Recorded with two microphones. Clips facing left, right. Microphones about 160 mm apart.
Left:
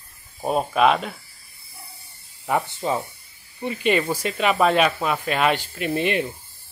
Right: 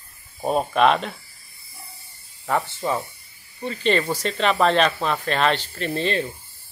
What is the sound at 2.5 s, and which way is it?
Speech, 15° left (ahead or behind).